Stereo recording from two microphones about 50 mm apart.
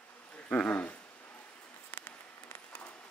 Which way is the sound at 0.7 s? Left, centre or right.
Left.